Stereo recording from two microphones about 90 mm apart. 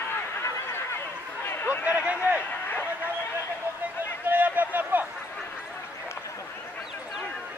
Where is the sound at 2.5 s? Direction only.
20° left (ahead or behind).